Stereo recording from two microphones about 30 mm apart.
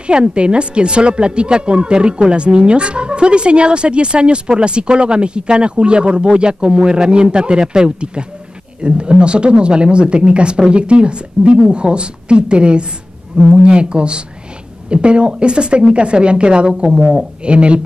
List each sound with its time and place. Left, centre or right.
0.0 s a woman's voice: right